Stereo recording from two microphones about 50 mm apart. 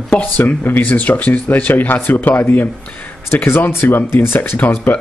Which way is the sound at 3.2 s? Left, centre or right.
Left.